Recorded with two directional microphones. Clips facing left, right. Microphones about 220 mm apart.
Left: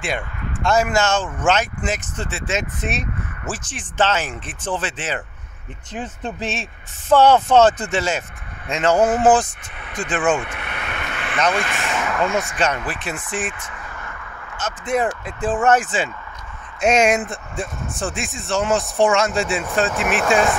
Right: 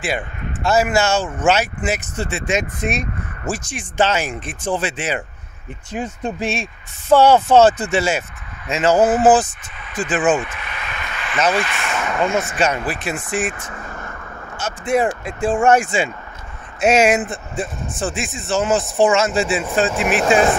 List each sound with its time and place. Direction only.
0.0 s speech: 5° right (ahead or behind)
10.4 s a sound: 60° left (ahead or behind)
11.3 s speech: 5° right (ahead or behind)
13.5 s vehicle: 45° right (ahead or behind)
14.6 s speech: 10° right (ahead or behind)
20.2 s speech: 30° right (ahead or behind)